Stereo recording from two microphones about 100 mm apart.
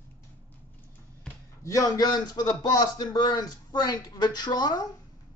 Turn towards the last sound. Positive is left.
turn(degrees=45)  # may be behind; listen again after turning